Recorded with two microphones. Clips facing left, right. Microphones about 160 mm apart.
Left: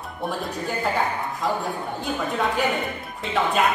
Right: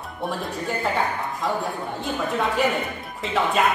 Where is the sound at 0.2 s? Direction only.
Centre (ahead or behind).